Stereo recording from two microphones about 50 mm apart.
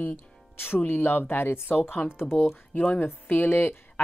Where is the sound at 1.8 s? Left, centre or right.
Left.